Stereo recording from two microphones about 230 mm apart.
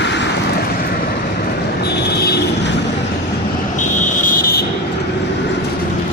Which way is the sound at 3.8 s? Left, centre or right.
Left.